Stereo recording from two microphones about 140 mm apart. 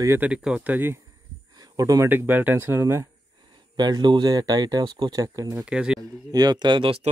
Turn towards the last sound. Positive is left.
turn(degrees=-40)  # may be behind; listen again after turning